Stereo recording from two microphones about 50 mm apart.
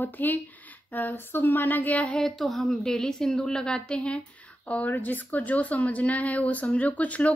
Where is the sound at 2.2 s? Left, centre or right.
Centre.